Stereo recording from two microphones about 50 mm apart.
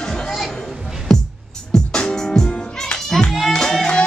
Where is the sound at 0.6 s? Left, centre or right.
Centre.